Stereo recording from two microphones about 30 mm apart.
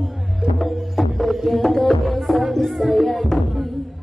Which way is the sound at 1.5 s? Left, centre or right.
Centre.